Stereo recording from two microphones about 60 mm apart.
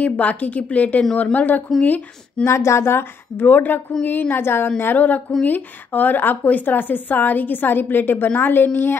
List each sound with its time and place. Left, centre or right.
0.0 s a woman's voice: left
2.4 s a woman's voice: left